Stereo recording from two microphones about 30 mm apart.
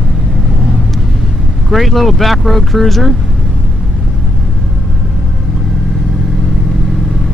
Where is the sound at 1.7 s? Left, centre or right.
Centre.